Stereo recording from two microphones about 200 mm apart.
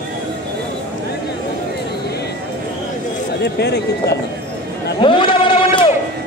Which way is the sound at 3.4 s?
55° left (ahead or behind).